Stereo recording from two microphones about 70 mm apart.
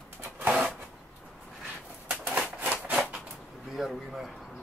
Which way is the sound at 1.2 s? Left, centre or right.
Centre.